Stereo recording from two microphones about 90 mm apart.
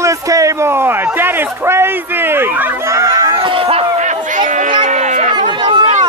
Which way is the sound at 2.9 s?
40° right (ahead or behind).